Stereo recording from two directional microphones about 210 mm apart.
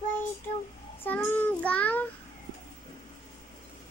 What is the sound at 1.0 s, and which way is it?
Child singing, 10° left (ahead or behind).